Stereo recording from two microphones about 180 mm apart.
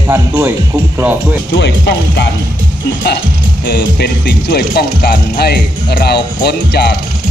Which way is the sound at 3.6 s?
65° left (ahead or behind).